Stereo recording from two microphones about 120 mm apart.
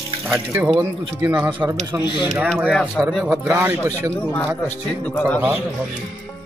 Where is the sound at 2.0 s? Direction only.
40° left (ahead or behind).